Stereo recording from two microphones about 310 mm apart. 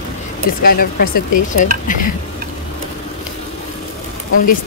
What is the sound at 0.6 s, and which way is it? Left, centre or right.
Speech, left.